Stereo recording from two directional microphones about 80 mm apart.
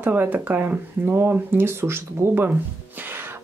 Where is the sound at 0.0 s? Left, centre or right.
Right.